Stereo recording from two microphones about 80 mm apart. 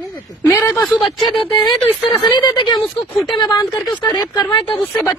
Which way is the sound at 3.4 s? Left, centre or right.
Left.